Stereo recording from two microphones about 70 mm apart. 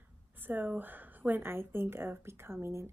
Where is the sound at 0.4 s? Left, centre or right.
Right.